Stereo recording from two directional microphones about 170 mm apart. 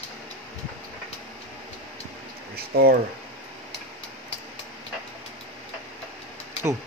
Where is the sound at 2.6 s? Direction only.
65° right (ahead or behind).